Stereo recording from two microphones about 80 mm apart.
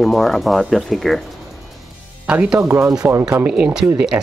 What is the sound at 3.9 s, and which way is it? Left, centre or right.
Speech, centre.